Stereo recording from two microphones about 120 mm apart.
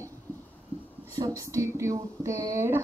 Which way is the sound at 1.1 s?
30° right (ahead or behind).